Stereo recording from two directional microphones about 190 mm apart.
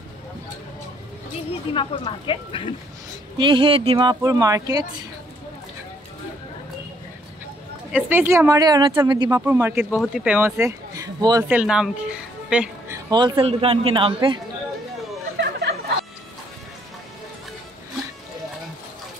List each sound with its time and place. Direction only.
1.7 s speech: 25° left (ahead or behind)
3.3 s speech: 25° right (ahead or behind)
7.9 s speech: 10° right (ahead or behind)
11.4 s a man's voice: 5° right (ahead or behind); by 14.4 s 25° right (ahead or behind)
15.3 s chatter: 60° right (ahead or behind)